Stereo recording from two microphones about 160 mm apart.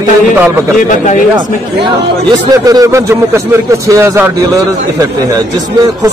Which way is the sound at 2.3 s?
20° right (ahead or behind).